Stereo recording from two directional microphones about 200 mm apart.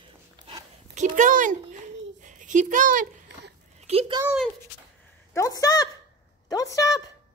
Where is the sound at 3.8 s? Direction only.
30° right (ahead or behind).